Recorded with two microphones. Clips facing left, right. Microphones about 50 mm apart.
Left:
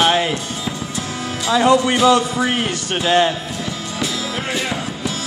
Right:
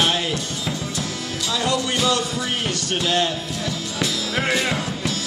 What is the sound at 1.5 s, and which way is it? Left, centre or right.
Music, left.